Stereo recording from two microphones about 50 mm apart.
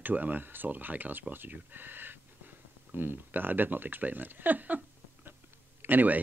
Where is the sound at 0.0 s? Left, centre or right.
Right.